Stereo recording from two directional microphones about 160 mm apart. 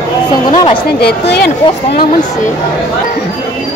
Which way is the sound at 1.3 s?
85° left.